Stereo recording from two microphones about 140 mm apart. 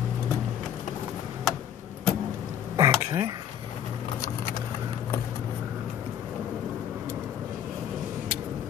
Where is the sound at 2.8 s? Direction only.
25° right (ahead or behind).